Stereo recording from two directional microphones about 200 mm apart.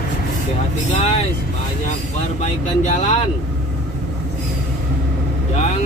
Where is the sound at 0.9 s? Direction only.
30° left (ahead or behind).